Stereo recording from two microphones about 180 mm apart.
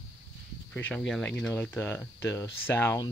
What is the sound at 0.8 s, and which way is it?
Speech, 10° left (ahead or behind).